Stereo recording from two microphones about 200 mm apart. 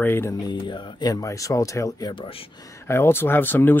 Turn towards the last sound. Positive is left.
turn(degrees=10)  # may be behind; listen again after turning